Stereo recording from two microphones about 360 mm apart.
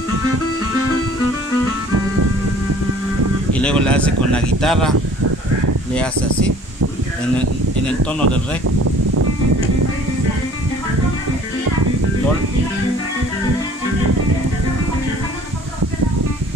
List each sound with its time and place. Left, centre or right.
3.5 s speech: centre
7.3 s speech: centre
8.6 s a sound: right